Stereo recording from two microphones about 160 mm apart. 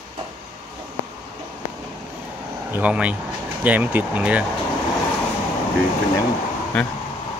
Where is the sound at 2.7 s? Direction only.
10° right (ahead or behind).